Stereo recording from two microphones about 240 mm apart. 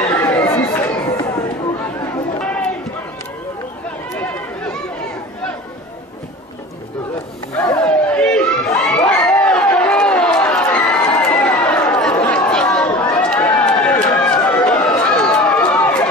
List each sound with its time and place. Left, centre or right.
0.1 s chatter: centre
1.0 s a sound: centre
4.2 s run: centre
7.5 s crowd: centre
14.1 s run: centre